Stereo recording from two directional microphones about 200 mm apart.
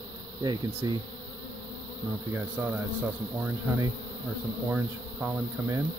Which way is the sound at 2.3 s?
10° right (ahead or behind).